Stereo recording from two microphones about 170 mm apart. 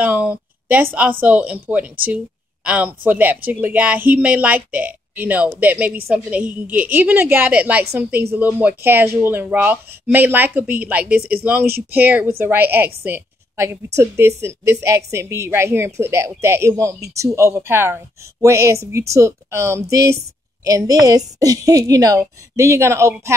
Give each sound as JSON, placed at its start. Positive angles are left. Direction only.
{"t": 0.0, "sound": "a woman's voice", "side_deg": -10}